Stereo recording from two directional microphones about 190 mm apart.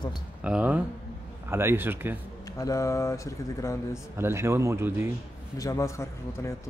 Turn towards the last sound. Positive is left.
turn(degrees=15)  # may be behind; listen again after turning